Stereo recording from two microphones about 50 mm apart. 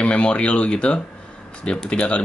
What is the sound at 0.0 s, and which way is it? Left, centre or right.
Speech, left.